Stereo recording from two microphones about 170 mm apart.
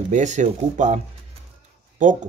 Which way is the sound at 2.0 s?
45° right (ahead or behind).